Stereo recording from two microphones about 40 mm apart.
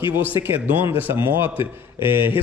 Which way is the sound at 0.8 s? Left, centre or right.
Right.